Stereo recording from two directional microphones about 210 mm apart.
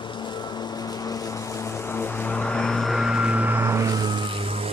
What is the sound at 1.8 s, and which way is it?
Vehicle, 10° left (ahead or behind).